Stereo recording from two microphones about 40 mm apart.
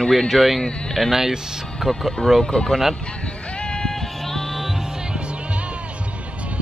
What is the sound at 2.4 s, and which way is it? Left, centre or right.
Speech, centre.